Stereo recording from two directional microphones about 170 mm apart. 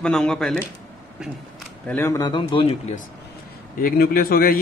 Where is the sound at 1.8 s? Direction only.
15° left (ahead or behind).